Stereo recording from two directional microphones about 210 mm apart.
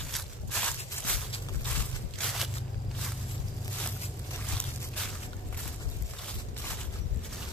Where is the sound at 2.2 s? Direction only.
Centre (ahead or behind).